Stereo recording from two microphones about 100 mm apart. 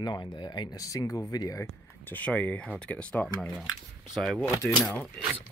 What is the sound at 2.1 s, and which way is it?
Speech, 15° left (ahead or behind).